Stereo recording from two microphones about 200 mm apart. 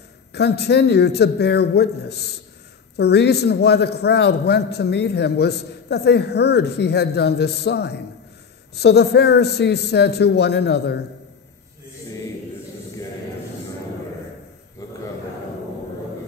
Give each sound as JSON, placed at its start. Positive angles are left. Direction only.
{"t": 0.3, "sound": "a man's voice", "side_deg": 55}